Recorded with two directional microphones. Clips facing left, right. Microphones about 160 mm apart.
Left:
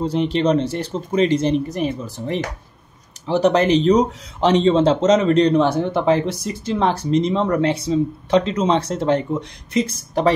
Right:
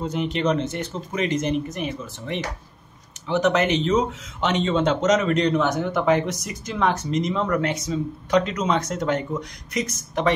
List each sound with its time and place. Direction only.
0.0 s speech: 30° left (ahead or behind)